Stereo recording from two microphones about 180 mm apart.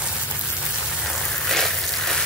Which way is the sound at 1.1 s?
Centre (ahead or behind).